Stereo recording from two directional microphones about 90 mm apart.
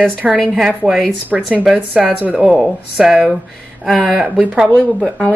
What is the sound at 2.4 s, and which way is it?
Speech, 5° right (ahead or behind).